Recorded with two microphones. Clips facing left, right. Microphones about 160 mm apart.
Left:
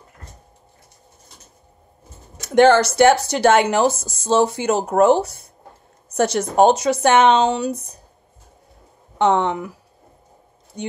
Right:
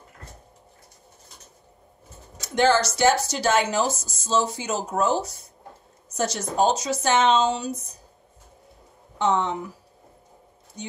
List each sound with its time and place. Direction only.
2.3 s speech: 60° left (ahead or behind)
9.2 s speech: 65° left (ahead or behind)
10.8 s speech: 60° left (ahead or behind)